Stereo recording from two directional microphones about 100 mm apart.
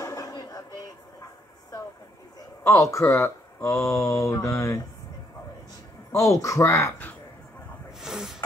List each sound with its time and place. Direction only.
0.0 s a sound: 40° left (ahead or behind)
2.6 s speech: 30° left (ahead or behind)
6.1 s speech: 35° left (ahead or behind)
8.0 s snort: 5° right (ahead or behind)